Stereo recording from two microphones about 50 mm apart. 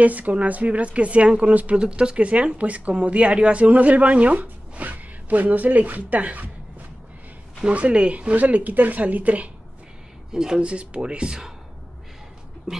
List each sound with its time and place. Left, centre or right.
0.0 s speech: right
1.8 s speech: centre
7.6 s speech: right
10.3 s speech: centre
10.6 s speech: right
12.7 s speech: centre